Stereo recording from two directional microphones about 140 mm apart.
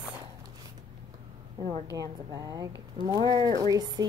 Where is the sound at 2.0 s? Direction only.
25° right (ahead or behind).